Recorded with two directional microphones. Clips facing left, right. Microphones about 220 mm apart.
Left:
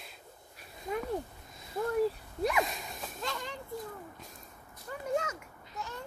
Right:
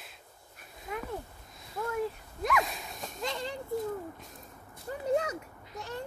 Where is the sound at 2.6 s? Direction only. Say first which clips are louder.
Left 1 dB; centre (ahead or behind).